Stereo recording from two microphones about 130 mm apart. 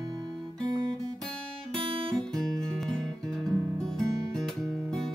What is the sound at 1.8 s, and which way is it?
Guitar, 40° right (ahead or behind).